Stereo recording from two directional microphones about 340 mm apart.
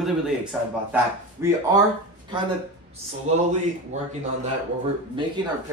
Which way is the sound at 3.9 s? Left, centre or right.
Centre.